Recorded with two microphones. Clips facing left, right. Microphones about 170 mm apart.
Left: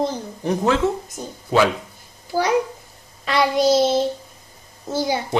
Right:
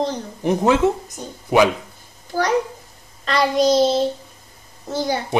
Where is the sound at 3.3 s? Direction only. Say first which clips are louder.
Even; 5° left (ahead or behind).